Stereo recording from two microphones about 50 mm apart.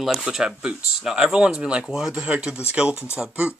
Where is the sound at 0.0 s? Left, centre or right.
Centre.